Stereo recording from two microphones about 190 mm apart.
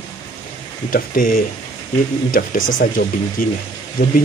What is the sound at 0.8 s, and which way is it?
Speech, 45° left (ahead or behind).